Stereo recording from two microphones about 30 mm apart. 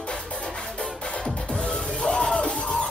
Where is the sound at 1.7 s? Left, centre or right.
Left.